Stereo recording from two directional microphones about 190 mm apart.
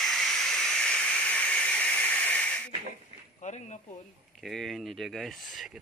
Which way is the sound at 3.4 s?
35° left (ahead or behind).